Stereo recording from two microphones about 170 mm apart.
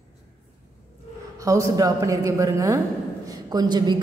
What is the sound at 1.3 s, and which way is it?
A woman's voice, 20° right (ahead or behind).